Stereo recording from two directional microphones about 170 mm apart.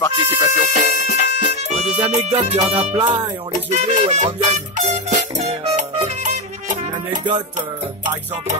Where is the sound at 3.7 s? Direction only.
45° right (ahead or behind).